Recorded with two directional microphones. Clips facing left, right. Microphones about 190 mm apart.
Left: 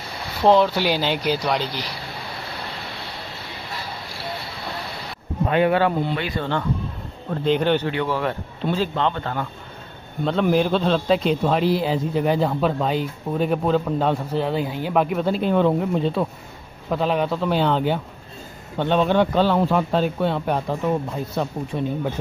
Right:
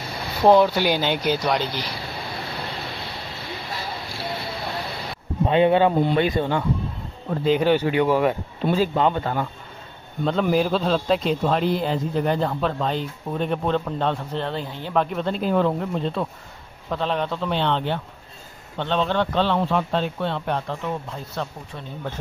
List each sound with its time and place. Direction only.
0.4 s speech: 10° right (ahead or behind)
0.7 s speech: centre (ahead or behind)
5.5 s speech: 25° right (ahead or behind)
7.4 s speech: 5° right (ahead or behind)
10.2 s speech: centre (ahead or behind)